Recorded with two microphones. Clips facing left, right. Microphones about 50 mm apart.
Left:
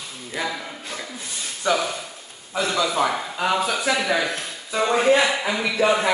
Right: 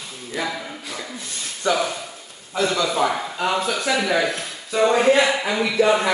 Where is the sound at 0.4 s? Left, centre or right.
Centre.